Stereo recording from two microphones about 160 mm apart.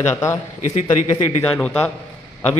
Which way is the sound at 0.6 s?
40° left (ahead or behind).